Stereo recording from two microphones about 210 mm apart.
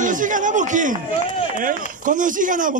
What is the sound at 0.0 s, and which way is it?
A man's voice, 40° right (ahead or behind).